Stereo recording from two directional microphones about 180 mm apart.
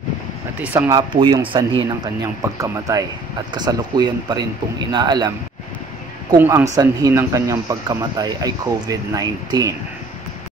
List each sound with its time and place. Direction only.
0.6 s speech: 10° right (ahead or behind)
0.9 s speech: 25° right (ahead or behind)
2.4 s speech: 20° right (ahead or behind)
6.3 s speech: 15° right (ahead or behind)